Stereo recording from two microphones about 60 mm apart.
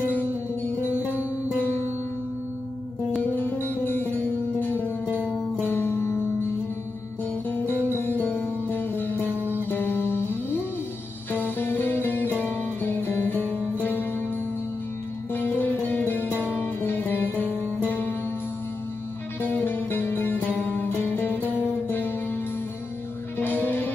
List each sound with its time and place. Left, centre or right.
0.1 s music: left
3.2 s music: left
7.4 s music: left
15.3 s music: left
19.4 s music: left